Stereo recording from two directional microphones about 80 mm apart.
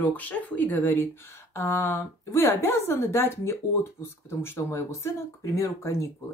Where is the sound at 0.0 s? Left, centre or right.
Left.